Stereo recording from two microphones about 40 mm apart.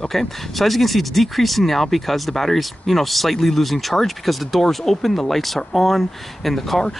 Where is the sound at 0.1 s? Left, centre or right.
Centre.